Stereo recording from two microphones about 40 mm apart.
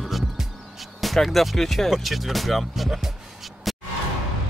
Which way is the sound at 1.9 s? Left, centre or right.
Centre.